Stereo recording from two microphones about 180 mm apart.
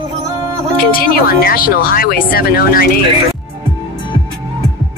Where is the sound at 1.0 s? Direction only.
55° left (ahead or behind).